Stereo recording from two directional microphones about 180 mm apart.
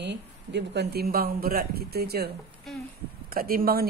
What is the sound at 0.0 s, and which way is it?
Speech, 75° right (ahead or behind).